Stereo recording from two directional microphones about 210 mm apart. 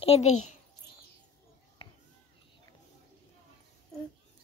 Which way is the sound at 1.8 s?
25° left (ahead or behind).